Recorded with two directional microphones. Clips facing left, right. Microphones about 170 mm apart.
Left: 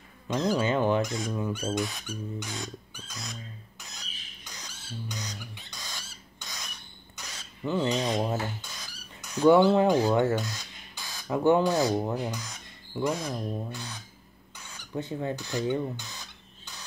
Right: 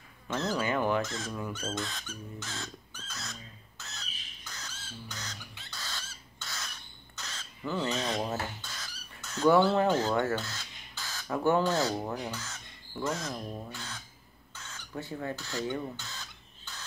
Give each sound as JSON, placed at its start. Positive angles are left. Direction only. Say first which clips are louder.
{"t": 0.3, "sound": "speech", "louder": "left 5 dB", "side_deg": 15}
{"t": 14.5, "sound": "bird", "louder": "left 5 dB", "side_deg": 15}